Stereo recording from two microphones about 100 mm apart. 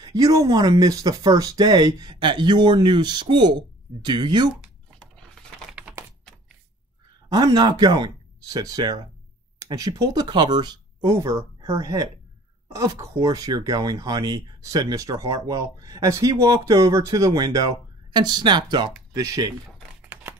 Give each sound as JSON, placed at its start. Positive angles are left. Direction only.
{"t": 0.0, "sound": "speech", "side_deg": -40}
{"t": 4.9, "sound": "a sound", "side_deg": 5}
{"t": 5.7, "sound": "typing", "side_deg": -15}
{"t": 7.2, "sound": "speech", "side_deg": -40}
{"t": 11.1, "sound": "speech", "side_deg": -35}
{"t": 19.1, "sound": "speech", "side_deg": -35}